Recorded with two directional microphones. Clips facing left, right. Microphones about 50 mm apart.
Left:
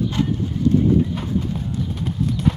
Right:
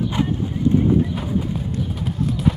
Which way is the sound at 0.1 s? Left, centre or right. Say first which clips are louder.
Even; centre.